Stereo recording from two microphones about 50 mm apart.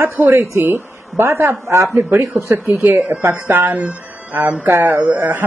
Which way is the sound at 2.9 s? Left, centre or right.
Right.